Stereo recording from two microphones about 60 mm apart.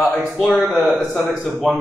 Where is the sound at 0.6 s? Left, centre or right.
Centre.